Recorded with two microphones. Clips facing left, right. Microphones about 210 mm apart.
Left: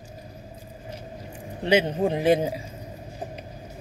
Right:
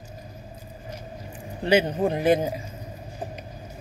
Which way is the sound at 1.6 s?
25° left (ahead or behind).